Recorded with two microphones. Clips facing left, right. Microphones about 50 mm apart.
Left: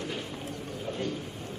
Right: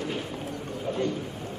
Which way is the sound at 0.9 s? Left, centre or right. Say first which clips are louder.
Right 5 dB; right.